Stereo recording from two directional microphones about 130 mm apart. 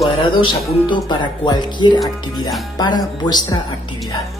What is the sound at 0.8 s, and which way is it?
Speech, 35° left (ahead or behind).